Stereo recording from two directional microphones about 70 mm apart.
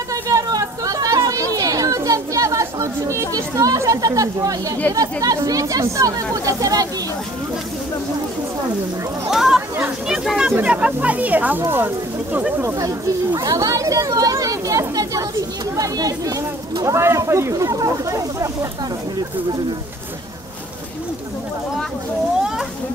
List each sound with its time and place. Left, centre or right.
0.1 s a sound: right
3.3 s speech: right
9.3 s speech: centre; by 12.4 s right
12.6 s speech: right
16.9 s speech: right